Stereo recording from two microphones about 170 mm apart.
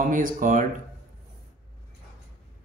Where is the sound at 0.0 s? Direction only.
50° right (ahead or behind).